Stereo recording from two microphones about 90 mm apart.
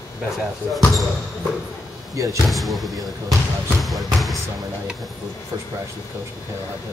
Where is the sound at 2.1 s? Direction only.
35° right (ahead or behind).